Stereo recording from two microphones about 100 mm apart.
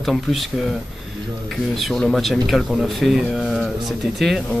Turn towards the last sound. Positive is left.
turn(degrees=0)  # may be behind; listen again after turning